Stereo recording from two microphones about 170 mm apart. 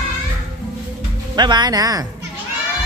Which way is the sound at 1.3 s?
25° right (ahead or behind).